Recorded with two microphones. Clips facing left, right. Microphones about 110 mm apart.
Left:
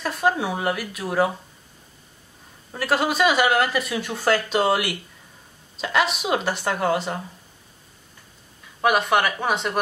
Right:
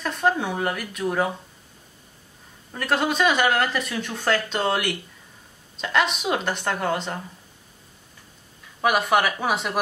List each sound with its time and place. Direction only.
0.0 s speech: 5° left (ahead or behind)
2.7 s speech: 5° left (ahead or behind)
8.8 s speech: centre (ahead or behind)